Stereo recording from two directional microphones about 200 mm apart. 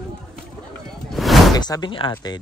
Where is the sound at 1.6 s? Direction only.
20° left (ahead or behind).